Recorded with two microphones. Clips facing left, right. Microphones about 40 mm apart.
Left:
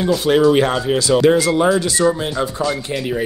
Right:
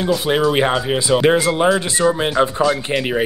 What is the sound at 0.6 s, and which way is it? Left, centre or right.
Speech, right.